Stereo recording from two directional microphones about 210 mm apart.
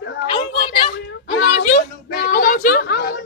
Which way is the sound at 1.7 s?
45° left (ahead or behind).